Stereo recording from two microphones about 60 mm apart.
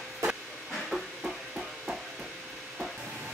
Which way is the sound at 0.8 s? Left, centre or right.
Centre.